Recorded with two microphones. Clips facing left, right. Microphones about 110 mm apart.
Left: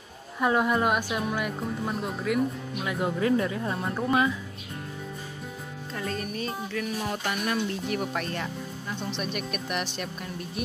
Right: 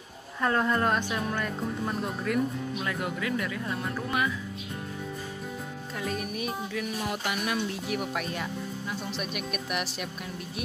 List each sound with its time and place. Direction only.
0.4 s speech: 10° left (ahead or behind)
2.9 s speech: 25° left (ahead or behind)
5.9 s speech: 5° right (ahead or behind)